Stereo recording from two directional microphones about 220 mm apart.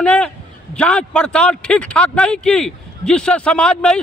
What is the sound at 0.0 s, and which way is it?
A man's voice, 5° left (ahead or behind).